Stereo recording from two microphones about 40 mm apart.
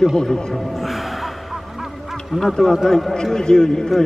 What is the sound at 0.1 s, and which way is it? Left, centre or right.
Speech, centre.